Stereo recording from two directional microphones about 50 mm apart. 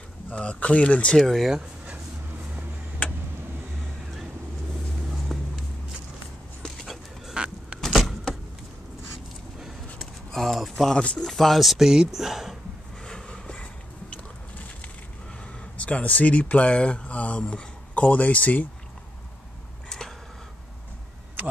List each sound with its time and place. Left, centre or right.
0.3 s speech: left
1.1 s speech: centre
5.3 s walk: centre
6.8 s dog: centre
7.3 s vehicle: centre
10.3 s a sound: centre
11.0 s speech: centre
11.2 s speech: centre
13.0 s vehicle: centre
15.8 s speech: left
19.9 s a sound: centre